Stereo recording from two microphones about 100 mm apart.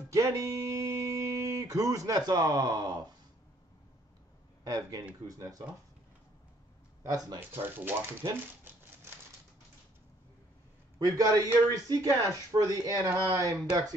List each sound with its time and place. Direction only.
0.1 s speech: 35° right (ahead or behind)
4.6 s speech: 40° right (ahead or behind)
7.0 s speech: 35° right (ahead or behind)
7.3 s speech: 20° right (ahead or behind)
11.1 s speech: 35° right (ahead or behind)